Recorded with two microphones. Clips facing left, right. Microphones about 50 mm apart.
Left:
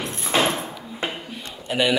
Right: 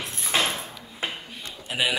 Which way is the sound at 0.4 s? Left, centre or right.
Centre.